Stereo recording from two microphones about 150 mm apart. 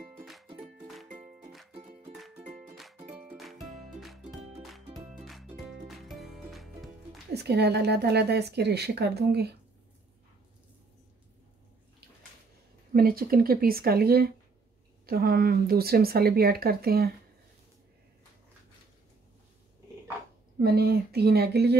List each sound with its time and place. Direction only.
0.0 s music: centre (ahead or behind)
1.5 s music: centre (ahead or behind)
1.8 s music: 35° right (ahead or behind)
2.3 s music: 55° right (ahead or behind)
2.7 s music: centre (ahead or behind)
4.4 s music: 45° right (ahead or behind)
5.7 s music: centre (ahead or behind)
7.3 s a woman's voice: 90° right
12.9 s a woman's voice: 80° right
20.5 s speech: 90° right